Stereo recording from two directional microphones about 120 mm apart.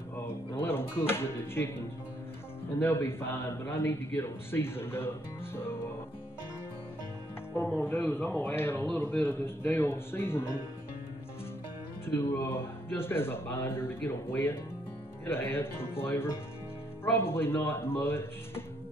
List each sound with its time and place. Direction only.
0.6 s speech: 20° left (ahead or behind)
2.8 s speech: 20° left (ahead or behind)
7.5 s speech: 15° left (ahead or behind)
12.1 s speech: 20° left (ahead or behind)